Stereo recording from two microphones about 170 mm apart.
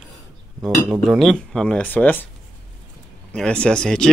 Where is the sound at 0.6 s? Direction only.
10° right (ahead or behind).